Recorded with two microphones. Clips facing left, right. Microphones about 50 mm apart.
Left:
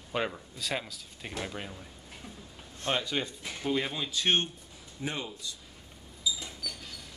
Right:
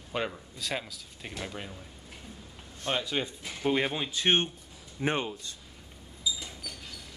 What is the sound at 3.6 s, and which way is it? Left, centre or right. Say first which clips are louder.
Speech: right 3 dB; right.